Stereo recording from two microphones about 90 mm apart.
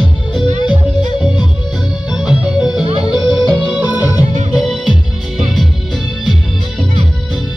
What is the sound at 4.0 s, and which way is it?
Music, 45° left (ahead or behind).